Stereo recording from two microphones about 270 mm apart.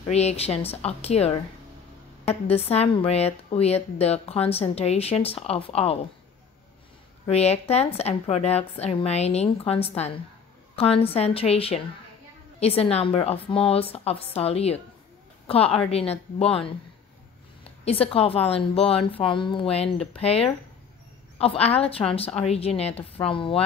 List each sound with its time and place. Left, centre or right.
0.1 s speech: left
7.2 s a woman's voice: left
17.8 s speech: left